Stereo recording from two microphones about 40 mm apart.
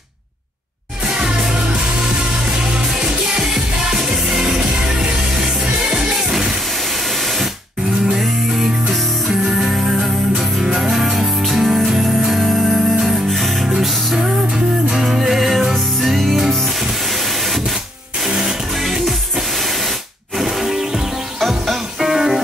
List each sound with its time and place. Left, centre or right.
1.0 s music: centre
8.2 s music: centre
13.7 s music: centre
18.3 s music: centre
20.3 s music: centre
21.4 s music: centre
22.1 s music: centre